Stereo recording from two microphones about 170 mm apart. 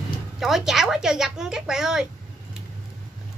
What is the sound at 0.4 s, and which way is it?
Speech, centre (ahead or behind).